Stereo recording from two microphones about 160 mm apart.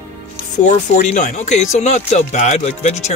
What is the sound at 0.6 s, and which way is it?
Speech, 50° left (ahead or behind).